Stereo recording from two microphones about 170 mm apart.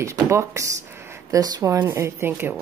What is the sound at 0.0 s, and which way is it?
Speech, 15° right (ahead or behind).